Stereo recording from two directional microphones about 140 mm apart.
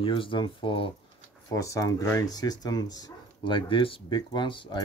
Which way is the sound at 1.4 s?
20° left (ahead or behind).